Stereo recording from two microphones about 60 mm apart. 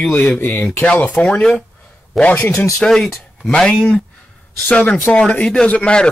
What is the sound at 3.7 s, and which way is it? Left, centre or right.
Speech, left.